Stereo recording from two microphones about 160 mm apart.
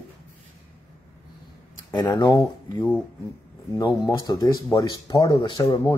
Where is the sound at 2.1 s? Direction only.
20° left (ahead or behind).